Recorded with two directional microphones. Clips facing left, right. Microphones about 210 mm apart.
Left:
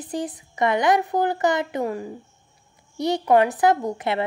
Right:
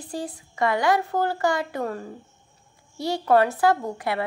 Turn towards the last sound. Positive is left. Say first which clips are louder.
# left 2 dB
turn(degrees=20)  # may be behind; listen again after turning